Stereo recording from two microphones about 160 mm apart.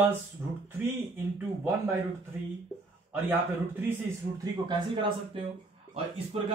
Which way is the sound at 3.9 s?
25° right (ahead or behind).